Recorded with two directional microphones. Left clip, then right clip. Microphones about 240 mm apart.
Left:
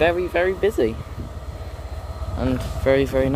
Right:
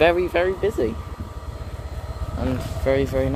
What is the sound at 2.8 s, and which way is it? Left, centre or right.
Speech, centre.